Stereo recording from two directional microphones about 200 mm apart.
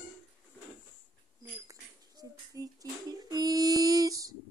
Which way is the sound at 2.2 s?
15° right (ahead or behind).